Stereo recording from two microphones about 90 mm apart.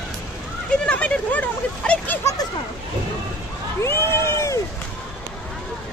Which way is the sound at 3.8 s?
30° left (ahead or behind).